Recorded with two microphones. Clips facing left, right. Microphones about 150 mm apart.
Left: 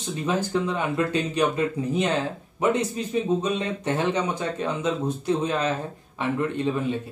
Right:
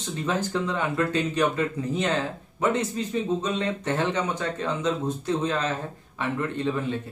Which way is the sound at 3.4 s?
15° left (ahead or behind).